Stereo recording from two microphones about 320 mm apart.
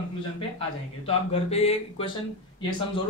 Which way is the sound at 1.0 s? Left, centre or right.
Centre.